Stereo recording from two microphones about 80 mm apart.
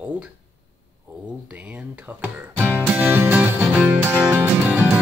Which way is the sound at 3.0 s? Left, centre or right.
Right.